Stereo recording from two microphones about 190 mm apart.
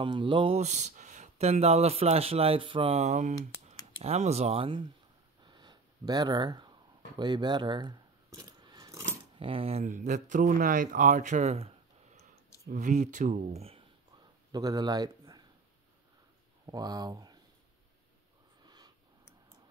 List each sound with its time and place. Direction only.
0.0 s speech: 25° right (ahead or behind)
5.4 s a sound: 25° right (ahead or behind)
7.2 s coin: 25° right (ahead or behind)
9.4 s speech: 30° right (ahead or behind)
14.5 s speech: 20° right (ahead or behind)
16.6 s speech: 20° right (ahead or behind)